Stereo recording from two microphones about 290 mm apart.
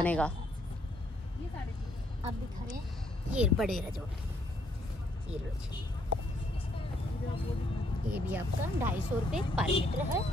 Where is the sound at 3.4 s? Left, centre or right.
Centre.